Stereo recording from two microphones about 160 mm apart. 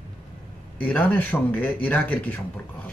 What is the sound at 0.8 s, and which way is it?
Speech, 10° left (ahead or behind).